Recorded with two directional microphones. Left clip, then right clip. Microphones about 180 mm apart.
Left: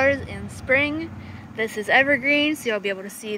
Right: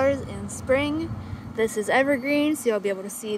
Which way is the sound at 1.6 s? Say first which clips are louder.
Left 2 dB; 25° right (ahead or behind).